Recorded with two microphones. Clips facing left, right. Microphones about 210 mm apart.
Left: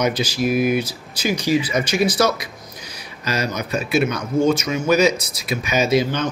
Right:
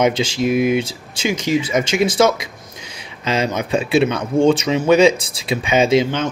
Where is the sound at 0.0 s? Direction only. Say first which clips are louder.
Right 3 dB; 25° right (ahead or behind).